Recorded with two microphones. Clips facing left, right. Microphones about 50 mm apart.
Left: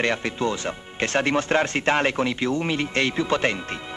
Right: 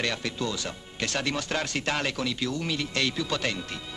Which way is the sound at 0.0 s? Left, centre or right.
Left.